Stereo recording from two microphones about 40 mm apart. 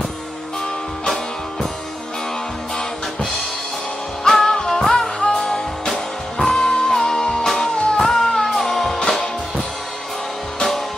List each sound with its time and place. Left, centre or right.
1.0 s music: centre
4.4 s music: centre